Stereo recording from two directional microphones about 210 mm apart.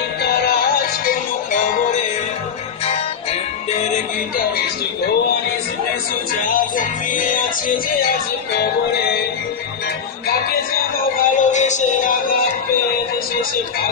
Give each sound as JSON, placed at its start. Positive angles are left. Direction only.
{"t": 1.0, "sound": "music", "side_deg": 40}
{"t": 6.4, "sound": "music", "side_deg": 40}
{"t": 11.2, "sound": "music", "side_deg": 35}